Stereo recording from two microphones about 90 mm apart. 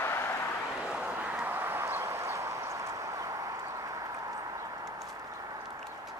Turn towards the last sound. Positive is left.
turn(degrees=-40)  # may be behind; listen again after turning